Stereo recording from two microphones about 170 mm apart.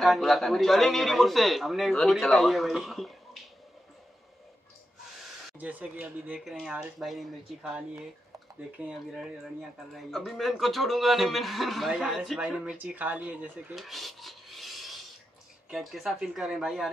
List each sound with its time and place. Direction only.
0.0 s a man's voice: centre (ahead or behind)
5.2 s a man's voice: 10° right (ahead or behind)